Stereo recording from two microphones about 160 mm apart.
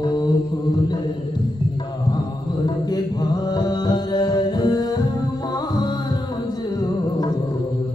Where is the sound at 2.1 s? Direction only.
25° left (ahead or behind).